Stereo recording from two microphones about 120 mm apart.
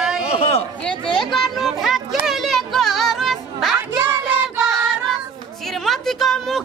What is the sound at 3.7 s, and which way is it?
Music, 20° right (ahead or behind).